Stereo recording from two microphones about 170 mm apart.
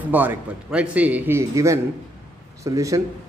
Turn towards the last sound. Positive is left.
turn(degrees=-20)  # may be behind; listen again after turning